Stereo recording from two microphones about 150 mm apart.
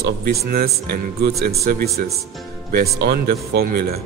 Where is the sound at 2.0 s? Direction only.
70° right (ahead or behind).